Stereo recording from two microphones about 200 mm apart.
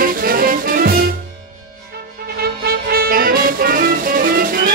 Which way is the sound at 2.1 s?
50° right (ahead or behind).